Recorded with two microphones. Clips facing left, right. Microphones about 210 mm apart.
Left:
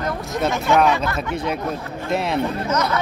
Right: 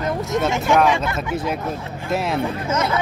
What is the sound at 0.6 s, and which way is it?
Speech, centre (ahead or behind).